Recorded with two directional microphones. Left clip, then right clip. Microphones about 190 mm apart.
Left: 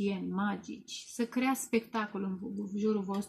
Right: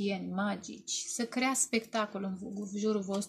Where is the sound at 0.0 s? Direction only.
15° right (ahead or behind).